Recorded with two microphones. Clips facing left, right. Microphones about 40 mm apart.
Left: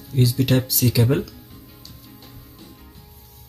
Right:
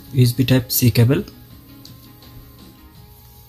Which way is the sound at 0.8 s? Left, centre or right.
Right.